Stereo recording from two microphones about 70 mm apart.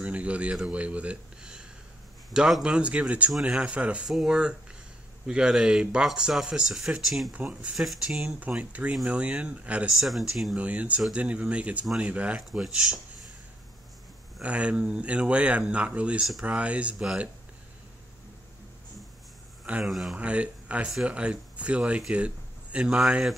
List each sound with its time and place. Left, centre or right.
0.0 s speech: centre
4.1 s speech: centre
7.3 s speech: right
7.7 s speech: centre
8.2 s speech: centre
9.9 s speech: centre
10.5 s speech: centre
12.4 s speech: centre
14.4 s speech: centre
19.8 s speech: centre
20.2 s speech: centre